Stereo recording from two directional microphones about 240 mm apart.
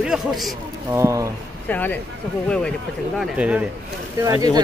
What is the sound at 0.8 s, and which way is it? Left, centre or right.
Speech, centre.